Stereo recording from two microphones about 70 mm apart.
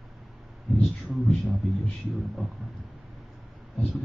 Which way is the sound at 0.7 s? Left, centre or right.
Centre.